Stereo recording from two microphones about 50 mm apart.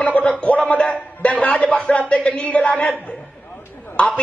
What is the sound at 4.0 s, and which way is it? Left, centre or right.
Speech, centre.